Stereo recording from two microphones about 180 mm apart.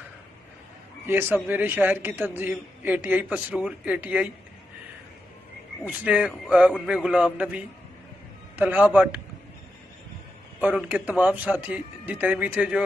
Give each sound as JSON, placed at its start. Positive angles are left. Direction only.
{"t": 1.0, "sound": "a man's voice", "side_deg": -10}
{"t": 5.9, "sound": "a man's voice", "side_deg": -5}
{"t": 10.6, "sound": "a man's voice", "side_deg": -10}